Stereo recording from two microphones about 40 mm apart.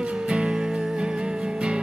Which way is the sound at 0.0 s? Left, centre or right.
Right.